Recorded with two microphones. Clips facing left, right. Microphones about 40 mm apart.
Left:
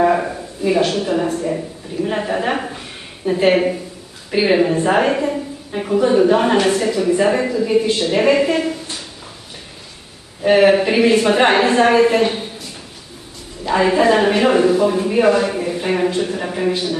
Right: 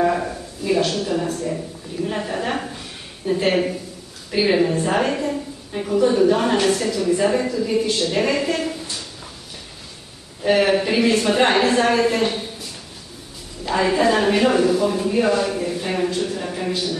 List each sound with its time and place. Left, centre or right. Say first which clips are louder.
0.0 s a woman's voice: left 4 dB; left
10.4 s a woman's voice: left 5 dB; centre
13.7 s a woman's voice: left 4 dB; centre